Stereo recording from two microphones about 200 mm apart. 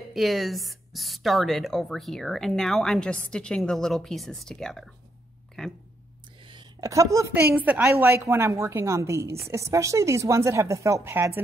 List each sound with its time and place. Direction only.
0.1 s a woman's voice: centre (ahead or behind)
6.4 s a woman's voice: 25° right (ahead or behind)